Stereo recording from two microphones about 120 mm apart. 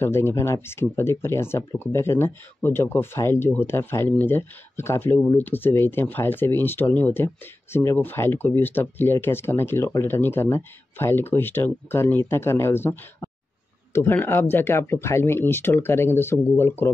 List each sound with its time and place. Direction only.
0.0 s speech: 20° left (ahead or behind)